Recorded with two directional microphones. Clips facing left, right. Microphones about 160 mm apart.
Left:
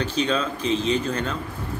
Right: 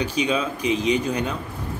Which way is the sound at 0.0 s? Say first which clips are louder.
Right 1 dB; 10° right (ahead or behind).